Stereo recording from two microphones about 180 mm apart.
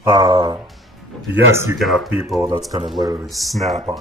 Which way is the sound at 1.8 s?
Centre (ahead or behind).